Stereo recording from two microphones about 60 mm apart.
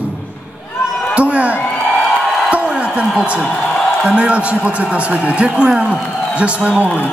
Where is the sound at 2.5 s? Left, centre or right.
Centre.